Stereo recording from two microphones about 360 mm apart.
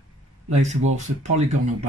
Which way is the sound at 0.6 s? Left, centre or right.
Centre.